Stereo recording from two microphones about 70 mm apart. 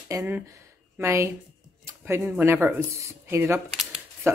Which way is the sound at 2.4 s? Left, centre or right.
Right.